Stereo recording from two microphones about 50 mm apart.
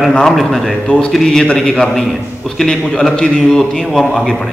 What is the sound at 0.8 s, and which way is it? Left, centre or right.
Speech, left.